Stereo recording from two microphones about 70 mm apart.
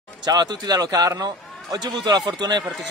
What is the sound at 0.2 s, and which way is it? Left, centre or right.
A man's voice, right.